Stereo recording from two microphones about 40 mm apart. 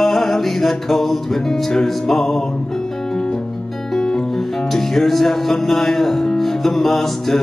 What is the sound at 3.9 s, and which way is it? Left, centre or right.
Music, centre.